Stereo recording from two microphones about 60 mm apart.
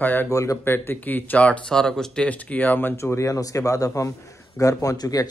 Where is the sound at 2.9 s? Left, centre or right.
Left.